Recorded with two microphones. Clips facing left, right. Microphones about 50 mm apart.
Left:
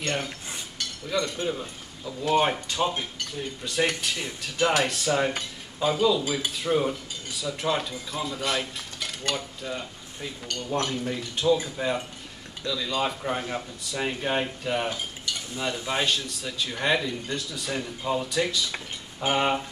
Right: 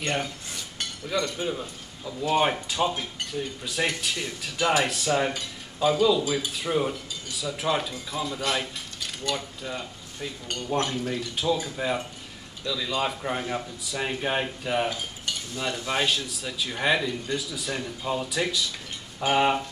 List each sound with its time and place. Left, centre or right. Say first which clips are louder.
0.0 s speech: right 1 dB; centre
10.5 s speech: right 1 dB; centre
10.9 s speech: right 1 dB; centre
15.9 s speech: right 1 dB; centre